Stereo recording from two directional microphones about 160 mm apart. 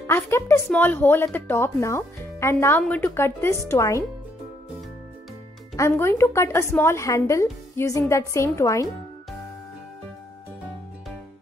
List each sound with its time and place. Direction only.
0.0 s a woman's voice: 15° left (ahead or behind)
5.8 s a woman's voice: 15° left (ahead or behind)